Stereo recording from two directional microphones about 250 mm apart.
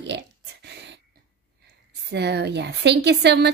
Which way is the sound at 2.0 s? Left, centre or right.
Right.